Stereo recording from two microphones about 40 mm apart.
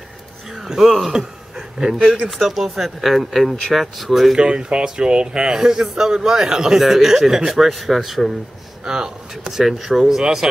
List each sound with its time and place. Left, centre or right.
0.5 s a sound: centre
1.1 s a man's voice: centre
2.3 s speech: centre
4.4 s a man's voice: right
7.5 s speech: centre
8.8 s speech: centre
9.5 s a man's voice: centre